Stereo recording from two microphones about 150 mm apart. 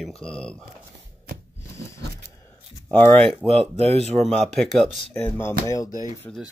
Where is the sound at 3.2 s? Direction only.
40° right (ahead or behind).